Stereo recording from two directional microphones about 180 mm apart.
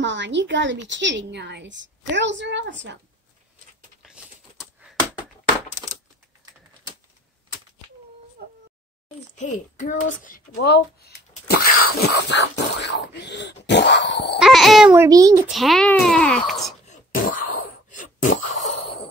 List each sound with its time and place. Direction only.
0.0 s a woman's voice: 80° right
4.0 s a sound: 5° right (ahead or behind)
8.4 s a sound: 60° right (ahead or behind)
9.4 s a child's voice: 45° left (ahead or behind); by 14.4 s 75° left (ahead or behind)
14.4 s speech: centre (ahead or behind)
15.0 s a child's voice: 20° right (ahead or behind)
15.4 s speech: centre (ahead or behind)
16.9 s throat clearing: 50° left (ahead or behind)